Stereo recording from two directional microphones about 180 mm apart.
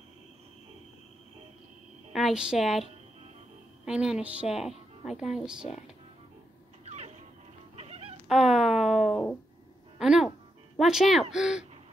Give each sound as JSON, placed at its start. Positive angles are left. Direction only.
{"t": 2.1, "sound": "a woman's voice", "side_deg": 0}
{"t": 3.8, "sound": "a woman's voice", "side_deg": -5}
{"t": 6.8, "sound": "a sound", "side_deg": -40}
{"t": 7.7, "sound": "cat", "side_deg": -35}
{"t": 8.3, "sound": "a sound", "side_deg": 0}
{"t": 9.9, "sound": "a woman's voice", "side_deg": -5}